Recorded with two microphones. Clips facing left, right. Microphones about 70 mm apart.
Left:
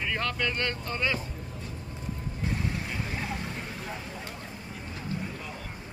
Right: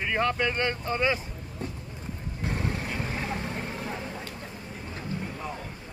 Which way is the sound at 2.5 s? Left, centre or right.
Right.